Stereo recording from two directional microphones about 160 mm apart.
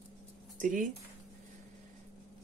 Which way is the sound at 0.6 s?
55° right (ahead or behind).